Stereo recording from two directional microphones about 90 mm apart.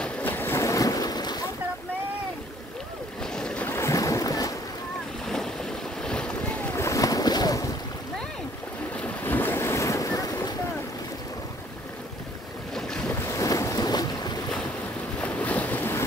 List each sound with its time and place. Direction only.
0.0 s boat: 20° left (ahead or behind); by 1.5 s 50° left (ahead or behind)
3.2 s boat: 10° left (ahead or behind)
3.6 s boat: 30° left (ahead or behind)
5.2 s waves: 5° left (ahead or behind)
6.0 s boat: 10° left (ahead or behind)
6.7 s boat: 35° left (ahead or behind)
8.9 s waves: 20° left (ahead or behind); by 10.5 s 40° left (ahead or behind)
13.2 s boat: 35° left (ahead or behind)
15.1 s boat: 15° left (ahead or behind)